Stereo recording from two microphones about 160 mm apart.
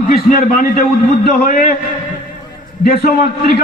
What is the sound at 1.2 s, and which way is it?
Speech, 70° left (ahead or behind).